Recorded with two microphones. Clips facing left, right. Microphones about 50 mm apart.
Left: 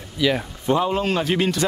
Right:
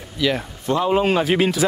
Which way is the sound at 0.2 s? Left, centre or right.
Centre.